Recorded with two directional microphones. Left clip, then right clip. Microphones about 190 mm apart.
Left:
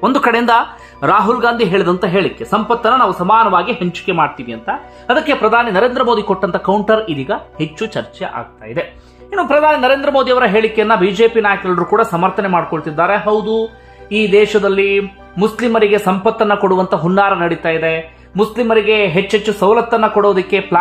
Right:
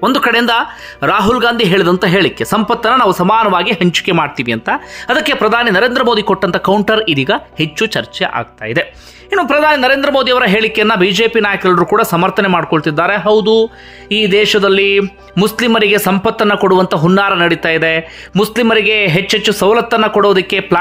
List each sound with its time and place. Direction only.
0.0 s a man's voice: 10° right (ahead or behind)